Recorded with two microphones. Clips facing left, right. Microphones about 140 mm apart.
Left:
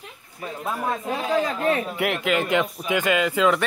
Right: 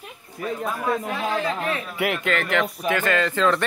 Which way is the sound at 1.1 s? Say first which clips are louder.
Left 2 dB; 35° left (ahead or behind).